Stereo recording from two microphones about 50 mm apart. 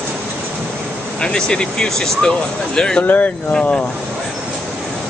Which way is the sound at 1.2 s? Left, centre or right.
Centre.